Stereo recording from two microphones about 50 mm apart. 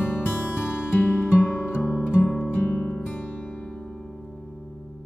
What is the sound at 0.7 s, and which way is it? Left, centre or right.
Music, left.